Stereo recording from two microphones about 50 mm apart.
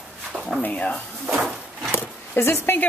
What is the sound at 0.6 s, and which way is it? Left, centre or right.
Speech, left.